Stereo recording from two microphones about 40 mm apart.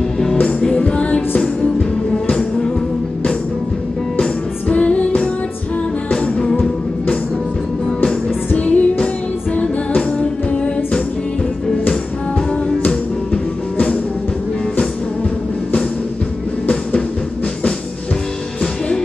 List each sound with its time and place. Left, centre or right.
0.7 s music: left
4.6 s music: left
8.5 s music: left